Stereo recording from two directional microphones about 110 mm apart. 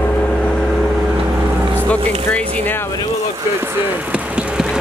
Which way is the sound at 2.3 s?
15° left (ahead or behind).